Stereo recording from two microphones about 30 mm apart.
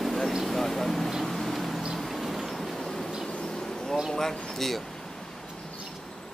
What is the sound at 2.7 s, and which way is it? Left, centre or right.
Train, centre.